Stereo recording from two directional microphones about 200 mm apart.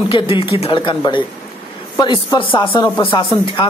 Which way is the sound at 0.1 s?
25° left (ahead or behind).